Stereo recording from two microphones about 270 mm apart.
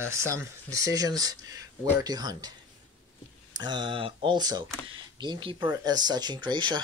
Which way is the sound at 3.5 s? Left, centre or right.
Centre.